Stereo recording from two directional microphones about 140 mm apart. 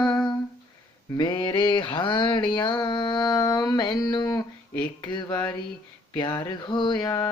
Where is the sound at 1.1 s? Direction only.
30° left (ahead or behind).